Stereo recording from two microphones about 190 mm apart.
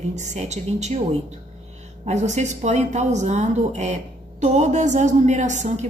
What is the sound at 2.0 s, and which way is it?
A woman's voice, 35° right (ahead or behind).